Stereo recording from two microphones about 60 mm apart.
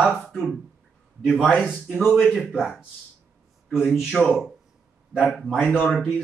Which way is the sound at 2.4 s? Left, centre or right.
Centre.